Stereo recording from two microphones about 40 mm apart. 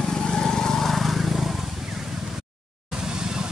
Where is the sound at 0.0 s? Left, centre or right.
Centre.